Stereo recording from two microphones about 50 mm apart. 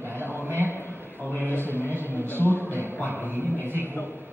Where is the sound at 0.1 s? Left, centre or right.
Right.